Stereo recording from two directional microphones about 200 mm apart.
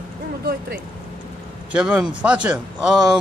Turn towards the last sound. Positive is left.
turn(degrees=-5)  # may be behind; listen again after turning